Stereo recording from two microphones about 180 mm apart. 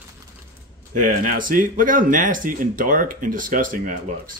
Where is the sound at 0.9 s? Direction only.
45° right (ahead or behind).